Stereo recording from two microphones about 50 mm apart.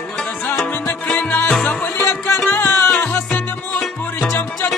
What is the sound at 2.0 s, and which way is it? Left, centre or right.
Music, left.